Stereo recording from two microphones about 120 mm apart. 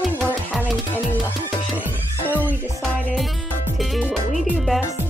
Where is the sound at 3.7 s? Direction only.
Centre (ahead or behind).